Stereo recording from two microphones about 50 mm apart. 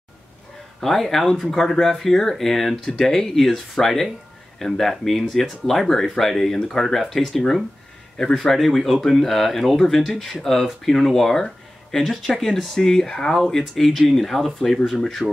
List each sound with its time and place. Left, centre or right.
0.7 s speech: centre